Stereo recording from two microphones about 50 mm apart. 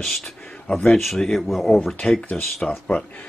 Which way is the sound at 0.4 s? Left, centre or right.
Centre.